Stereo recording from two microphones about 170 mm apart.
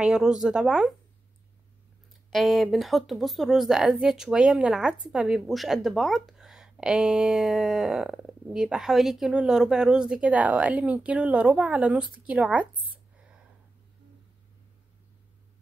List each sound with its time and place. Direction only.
0.0 s speech: 5° right (ahead or behind)
2.3 s speech: centre (ahead or behind)